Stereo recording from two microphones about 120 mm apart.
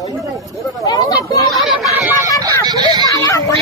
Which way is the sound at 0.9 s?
35° left (ahead or behind).